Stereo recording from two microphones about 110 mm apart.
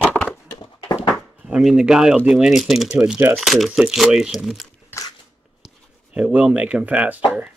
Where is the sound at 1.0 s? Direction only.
10° right (ahead or behind).